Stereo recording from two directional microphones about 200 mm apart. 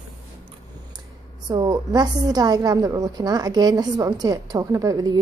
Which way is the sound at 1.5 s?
20° right (ahead or behind).